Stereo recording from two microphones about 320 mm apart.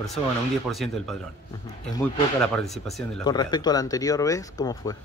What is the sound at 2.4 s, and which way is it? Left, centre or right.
Speech, centre.